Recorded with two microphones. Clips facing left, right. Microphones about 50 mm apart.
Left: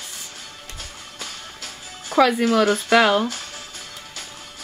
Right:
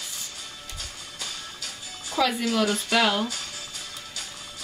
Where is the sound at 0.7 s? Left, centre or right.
Left.